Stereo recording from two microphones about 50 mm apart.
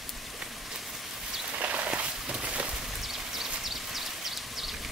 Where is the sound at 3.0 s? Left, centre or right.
Centre.